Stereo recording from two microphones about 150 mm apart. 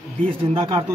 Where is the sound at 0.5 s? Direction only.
30° right (ahead or behind).